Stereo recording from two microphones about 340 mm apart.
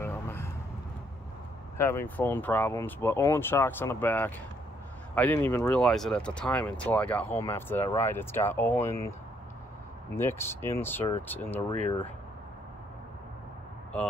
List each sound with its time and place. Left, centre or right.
0.0 s vehicle: centre
1.8 s speech: centre
10.1 s speech: centre